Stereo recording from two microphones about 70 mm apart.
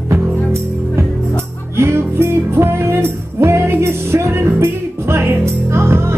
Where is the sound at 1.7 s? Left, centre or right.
Right.